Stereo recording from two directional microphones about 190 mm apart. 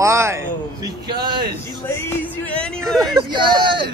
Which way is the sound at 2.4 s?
5° left (ahead or behind).